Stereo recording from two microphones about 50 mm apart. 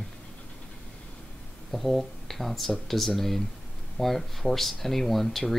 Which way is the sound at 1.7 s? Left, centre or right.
Centre.